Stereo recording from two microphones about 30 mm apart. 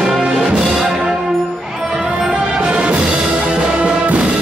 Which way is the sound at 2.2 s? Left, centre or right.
Right.